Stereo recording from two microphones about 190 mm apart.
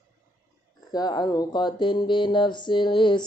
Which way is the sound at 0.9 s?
20° left (ahead or behind).